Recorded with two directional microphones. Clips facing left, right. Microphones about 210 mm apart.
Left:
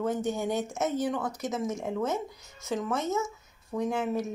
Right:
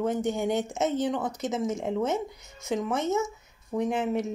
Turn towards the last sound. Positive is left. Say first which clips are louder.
# right 2 dB
turn(degrees=-20)  # may be behind; listen again after turning